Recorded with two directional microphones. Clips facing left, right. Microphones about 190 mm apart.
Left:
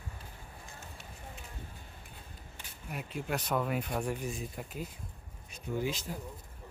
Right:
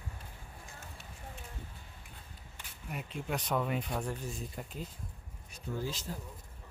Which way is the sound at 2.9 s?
5° left (ahead or behind).